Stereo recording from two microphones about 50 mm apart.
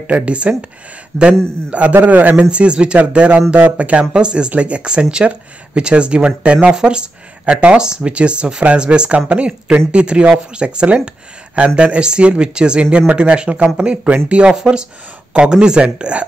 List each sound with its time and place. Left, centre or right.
0.0 s a man's voice: right
2.5 s speech: right
14.5 s speech: centre